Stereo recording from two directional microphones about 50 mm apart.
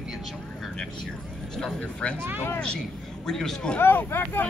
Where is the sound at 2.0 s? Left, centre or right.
Left.